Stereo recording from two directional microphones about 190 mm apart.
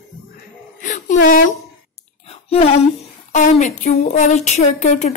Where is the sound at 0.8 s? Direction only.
45° left (ahead or behind).